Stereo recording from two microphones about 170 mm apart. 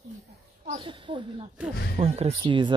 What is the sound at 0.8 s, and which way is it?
Speech, 30° right (ahead or behind).